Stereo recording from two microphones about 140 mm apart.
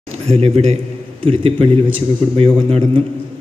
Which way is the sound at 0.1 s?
50° right (ahead or behind).